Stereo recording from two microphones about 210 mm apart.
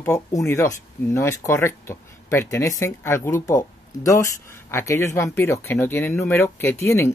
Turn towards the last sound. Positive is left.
turn(degrees=10)  # may be behind; listen again after turning